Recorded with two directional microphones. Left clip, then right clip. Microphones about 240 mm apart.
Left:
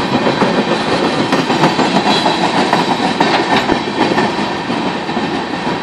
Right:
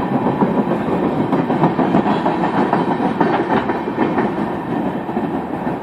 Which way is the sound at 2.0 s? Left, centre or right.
Left.